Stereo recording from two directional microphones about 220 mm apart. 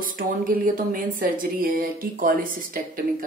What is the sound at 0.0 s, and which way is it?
Speech, 40° right (ahead or behind).